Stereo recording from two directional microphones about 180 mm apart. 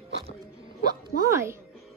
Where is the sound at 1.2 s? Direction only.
15° right (ahead or behind).